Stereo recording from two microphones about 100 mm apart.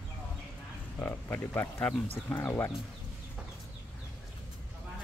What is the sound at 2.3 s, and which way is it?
Speech, 25° left (ahead or behind).